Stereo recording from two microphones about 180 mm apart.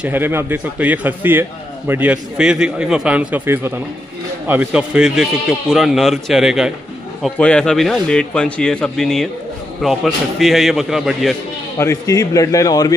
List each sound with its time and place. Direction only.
0.0 s a man's voice: 10° right (ahead or behind)
11.8 s a man's voice: 15° left (ahead or behind)